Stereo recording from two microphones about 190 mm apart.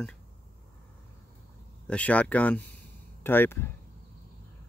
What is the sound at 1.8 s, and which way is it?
Speech, 5° left (ahead or behind).